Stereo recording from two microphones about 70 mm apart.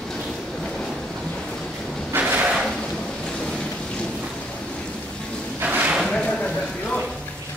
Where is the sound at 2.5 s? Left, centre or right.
Centre.